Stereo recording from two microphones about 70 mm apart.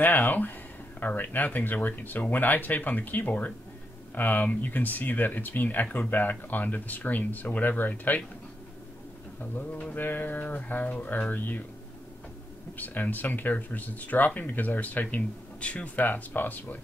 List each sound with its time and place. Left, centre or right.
0.0 s speech: left
9.4 s speech: left
12.7 s speech: left